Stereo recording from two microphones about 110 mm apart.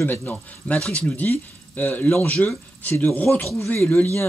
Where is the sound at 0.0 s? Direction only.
15° left (ahead or behind).